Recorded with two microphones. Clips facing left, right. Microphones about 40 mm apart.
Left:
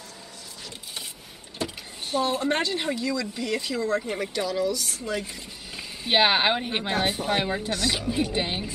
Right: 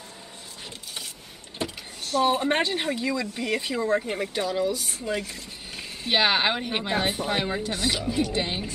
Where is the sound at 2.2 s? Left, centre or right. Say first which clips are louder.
Right 2 dB; right.